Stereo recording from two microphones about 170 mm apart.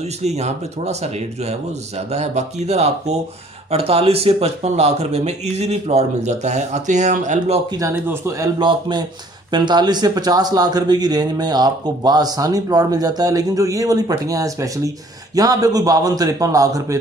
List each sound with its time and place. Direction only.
0.2 s speech: 40° right (ahead or behind)
7.7 s speech: 15° right (ahead or behind)